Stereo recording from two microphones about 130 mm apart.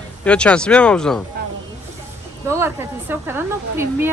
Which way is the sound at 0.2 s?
10° left (ahead or behind).